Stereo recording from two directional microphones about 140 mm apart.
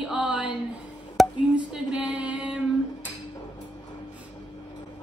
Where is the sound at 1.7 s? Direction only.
10° right (ahead or behind).